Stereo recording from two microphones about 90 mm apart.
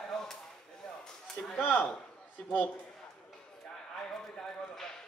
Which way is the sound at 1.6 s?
15° left (ahead or behind).